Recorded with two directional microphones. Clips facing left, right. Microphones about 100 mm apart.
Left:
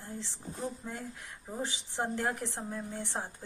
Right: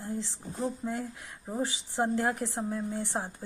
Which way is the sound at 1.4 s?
15° right (ahead or behind).